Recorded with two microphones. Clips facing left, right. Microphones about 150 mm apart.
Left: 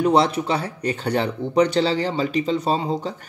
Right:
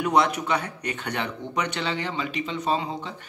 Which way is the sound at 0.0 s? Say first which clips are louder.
Left 4 dB; 30° left (ahead or behind).